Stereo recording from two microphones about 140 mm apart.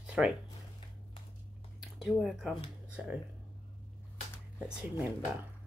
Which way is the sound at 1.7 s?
5° right (ahead or behind).